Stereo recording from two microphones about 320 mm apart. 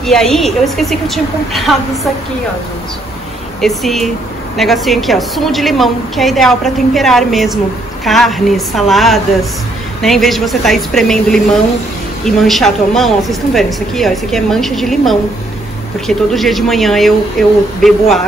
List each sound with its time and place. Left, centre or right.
0.0 s a woman's voice: centre
3.6 s a woman's voice: centre